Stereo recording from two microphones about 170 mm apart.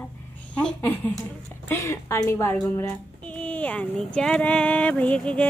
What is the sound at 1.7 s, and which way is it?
Speech, 15° left (ahead or behind).